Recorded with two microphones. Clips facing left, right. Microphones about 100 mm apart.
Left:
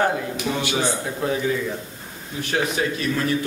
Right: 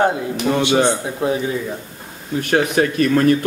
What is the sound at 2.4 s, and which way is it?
Speech, 60° right (ahead or behind).